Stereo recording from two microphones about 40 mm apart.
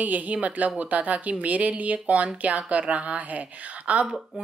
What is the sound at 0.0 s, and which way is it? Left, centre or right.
A woman's voice, right.